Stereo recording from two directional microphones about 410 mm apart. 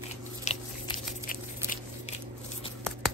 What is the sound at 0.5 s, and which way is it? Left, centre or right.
Biting, centre.